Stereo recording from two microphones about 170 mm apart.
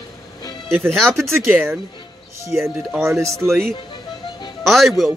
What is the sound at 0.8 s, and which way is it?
Speech, centre (ahead or behind).